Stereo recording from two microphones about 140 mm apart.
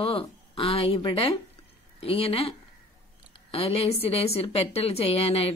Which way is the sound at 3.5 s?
45° left (ahead or behind).